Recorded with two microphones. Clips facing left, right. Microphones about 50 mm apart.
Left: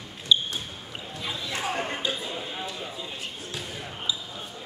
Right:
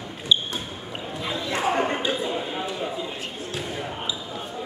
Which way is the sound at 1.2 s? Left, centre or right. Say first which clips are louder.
Right 5 dB; right.